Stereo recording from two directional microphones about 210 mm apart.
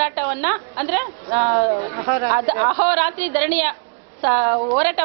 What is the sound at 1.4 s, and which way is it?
Speech, 25° right (ahead or behind).